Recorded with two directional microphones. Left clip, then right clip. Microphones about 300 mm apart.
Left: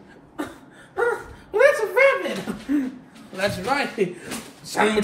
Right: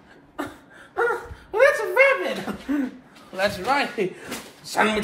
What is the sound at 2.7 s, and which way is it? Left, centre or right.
Speech, centre.